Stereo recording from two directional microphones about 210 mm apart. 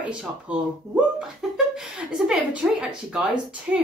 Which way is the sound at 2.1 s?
5° right (ahead or behind).